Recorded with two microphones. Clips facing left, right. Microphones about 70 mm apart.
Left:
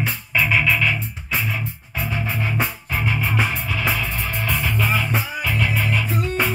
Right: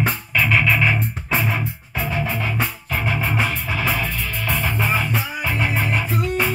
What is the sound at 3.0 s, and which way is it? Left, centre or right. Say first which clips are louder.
Music: even; right.